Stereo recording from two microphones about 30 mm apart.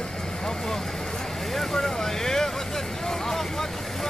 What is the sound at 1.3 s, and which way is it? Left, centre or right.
Speech, centre.